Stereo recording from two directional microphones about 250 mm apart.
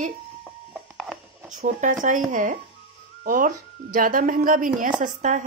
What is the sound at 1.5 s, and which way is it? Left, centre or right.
Speech, right.